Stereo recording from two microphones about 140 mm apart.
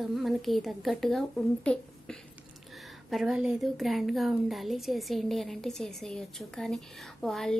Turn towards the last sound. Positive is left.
turn(degrees=5)  # may be behind; listen again after turning